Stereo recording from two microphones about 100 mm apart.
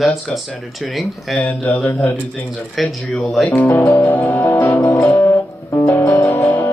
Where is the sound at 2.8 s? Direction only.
Centre (ahead or behind).